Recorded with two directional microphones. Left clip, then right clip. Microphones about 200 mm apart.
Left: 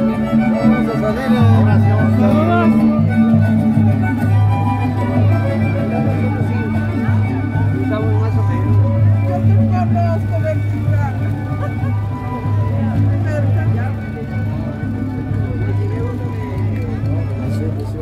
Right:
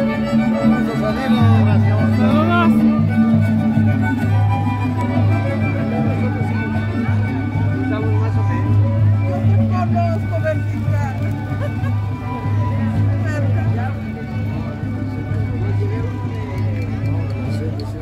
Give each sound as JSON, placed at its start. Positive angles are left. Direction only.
{"t": 0.0, "sound": "music", "side_deg": 30}
{"t": 1.0, "sound": "music", "side_deg": 20}
{"t": 2.3, "sound": "music", "side_deg": -10}
{"t": 2.7, "sound": "music", "side_deg": 30}